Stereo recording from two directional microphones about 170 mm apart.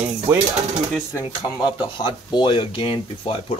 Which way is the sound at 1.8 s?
30° left (ahead or behind).